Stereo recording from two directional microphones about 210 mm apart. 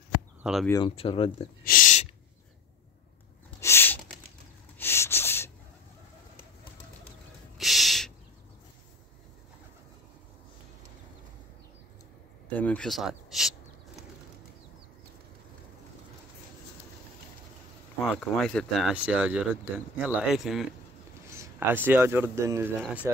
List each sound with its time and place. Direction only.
0.4 s speech: centre (ahead or behind)
0.7 s speech: 20° left (ahead or behind)
1.6 s a sound: 40° left (ahead or behind)
3.6 s a sound: 10° left (ahead or behind)
4.7 s snort: 10° left (ahead or behind)
7.5 s gasp: centre (ahead or behind)
12.5 s speech: 5° left (ahead or behind)
18.0 s speech: 5° left (ahead or behind)
21.3 s a sound: 10° right (ahead or behind)
22.3 s speech: 15° right (ahead or behind)